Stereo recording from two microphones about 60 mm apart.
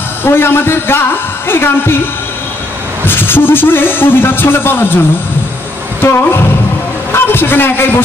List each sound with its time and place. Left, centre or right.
0.2 s speech: left
3.1 s speech: left
6.0 s speech: left